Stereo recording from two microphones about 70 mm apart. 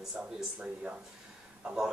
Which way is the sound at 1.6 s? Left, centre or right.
Centre.